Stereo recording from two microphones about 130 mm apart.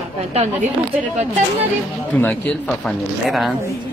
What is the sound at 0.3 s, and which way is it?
Speech, 55° right (ahead or behind).